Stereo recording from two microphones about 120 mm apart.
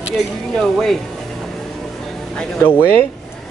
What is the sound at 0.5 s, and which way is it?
Speech, 5° left (ahead or behind).